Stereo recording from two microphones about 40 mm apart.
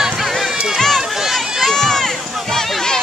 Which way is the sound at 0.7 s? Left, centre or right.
Centre.